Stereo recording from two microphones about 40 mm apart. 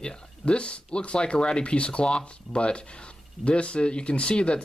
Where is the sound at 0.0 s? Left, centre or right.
Left.